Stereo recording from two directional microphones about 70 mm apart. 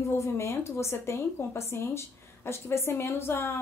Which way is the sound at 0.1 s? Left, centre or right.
Left.